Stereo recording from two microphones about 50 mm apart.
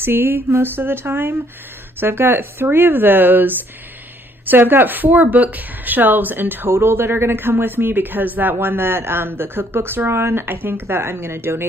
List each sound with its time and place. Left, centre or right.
0.0 s a woman's voice: right
6.7 s speech: right